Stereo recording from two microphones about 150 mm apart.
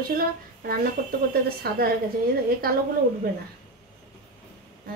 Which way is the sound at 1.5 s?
90° right.